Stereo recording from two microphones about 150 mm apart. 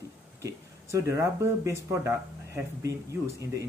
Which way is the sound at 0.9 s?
20° right (ahead or behind).